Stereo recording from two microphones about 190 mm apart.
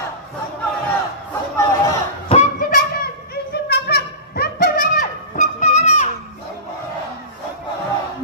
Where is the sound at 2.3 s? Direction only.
35° left (ahead or behind).